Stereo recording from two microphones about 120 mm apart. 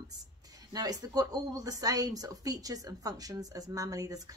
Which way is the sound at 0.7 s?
30° right (ahead or behind).